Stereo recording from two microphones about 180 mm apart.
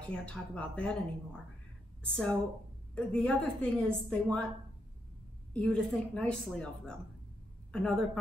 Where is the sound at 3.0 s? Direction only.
5° left (ahead or behind).